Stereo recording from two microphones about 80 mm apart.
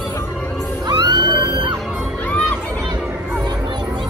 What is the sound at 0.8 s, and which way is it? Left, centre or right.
Music, right.